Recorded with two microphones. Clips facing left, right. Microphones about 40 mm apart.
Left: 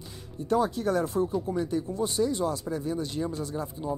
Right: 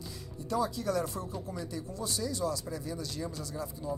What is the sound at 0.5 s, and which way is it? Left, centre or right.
Speech, left.